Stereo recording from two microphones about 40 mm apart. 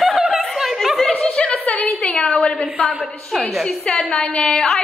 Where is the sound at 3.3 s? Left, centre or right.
Centre.